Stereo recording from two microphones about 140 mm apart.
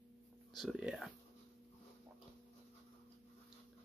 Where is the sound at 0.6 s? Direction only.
Centre (ahead or behind).